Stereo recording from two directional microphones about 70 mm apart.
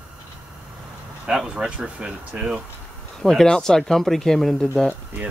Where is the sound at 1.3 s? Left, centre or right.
Centre.